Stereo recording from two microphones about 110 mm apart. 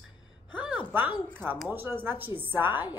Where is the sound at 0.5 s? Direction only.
15° right (ahead or behind).